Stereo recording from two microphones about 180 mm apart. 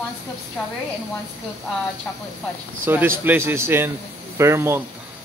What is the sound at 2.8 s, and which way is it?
A man's voice, 10° right (ahead or behind).